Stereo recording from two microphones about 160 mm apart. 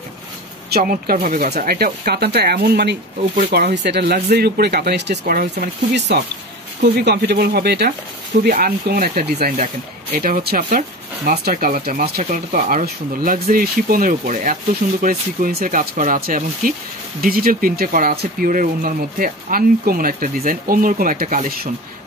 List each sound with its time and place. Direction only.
0.7 s speech: 70° right (ahead or behind); by 3.0 s 85° right
3.2 s speech: 45° right (ahead or behind)
3.5 s speech: 90° right
8.5 s speech: 75° right (ahead or behind)